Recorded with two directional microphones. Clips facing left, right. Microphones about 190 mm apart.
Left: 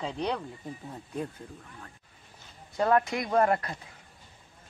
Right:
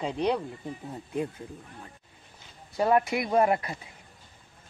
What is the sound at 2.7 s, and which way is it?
Speech, 10° right (ahead or behind).